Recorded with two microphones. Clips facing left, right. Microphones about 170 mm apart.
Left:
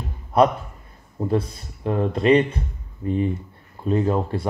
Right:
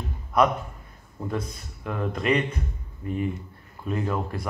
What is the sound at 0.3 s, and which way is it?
A man's voice, 30° left (ahead or behind).